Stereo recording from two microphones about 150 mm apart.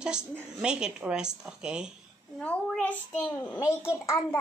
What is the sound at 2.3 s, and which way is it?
A child's voice, 5° left (ahead or behind).